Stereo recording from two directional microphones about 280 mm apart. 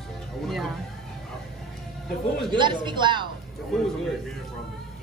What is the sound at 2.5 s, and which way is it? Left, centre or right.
Speech, centre.